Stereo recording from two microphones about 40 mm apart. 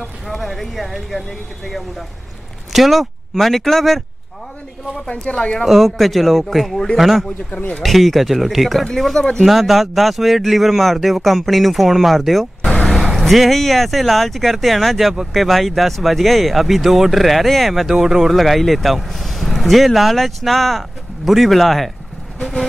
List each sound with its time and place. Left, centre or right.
0.3 s speech: centre
5.2 s speech: left
5.7 s speech: centre
7.2 s speech: left
7.8 s speech: centre
8.8 s speech: centre
9.4 s speech: centre
17.8 s speech: centre
18.4 s speech: centre